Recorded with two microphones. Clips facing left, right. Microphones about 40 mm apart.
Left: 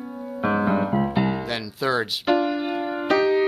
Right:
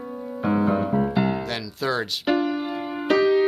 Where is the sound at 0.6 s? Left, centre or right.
Left.